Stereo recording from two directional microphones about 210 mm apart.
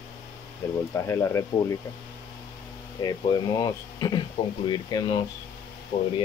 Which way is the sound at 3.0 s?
20° left (ahead or behind).